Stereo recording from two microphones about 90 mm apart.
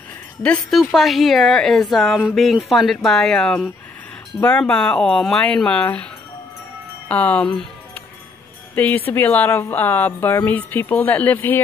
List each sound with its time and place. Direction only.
0.7 s speech: centre (ahead or behind)
4.4 s speech: 20° left (ahead or behind)
7.1 s speech: 15° left (ahead or behind)
8.7 s wind chime: 20° left (ahead or behind)
9.1 s a woman's voice: 20° left (ahead or behind)